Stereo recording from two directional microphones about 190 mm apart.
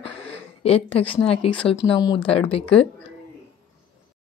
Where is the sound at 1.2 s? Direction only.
30° left (ahead or behind).